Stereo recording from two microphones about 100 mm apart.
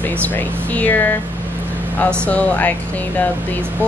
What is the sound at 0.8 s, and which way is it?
Speech, 15° left (ahead or behind).